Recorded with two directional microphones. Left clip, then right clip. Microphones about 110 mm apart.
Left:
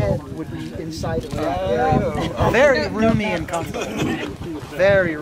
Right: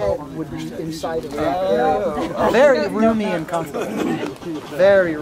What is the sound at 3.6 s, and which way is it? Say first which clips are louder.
Speech: right 2 dB; 25° left (ahead or behind).